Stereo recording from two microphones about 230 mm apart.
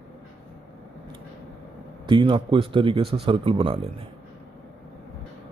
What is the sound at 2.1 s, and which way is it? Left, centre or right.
A man's voice, right.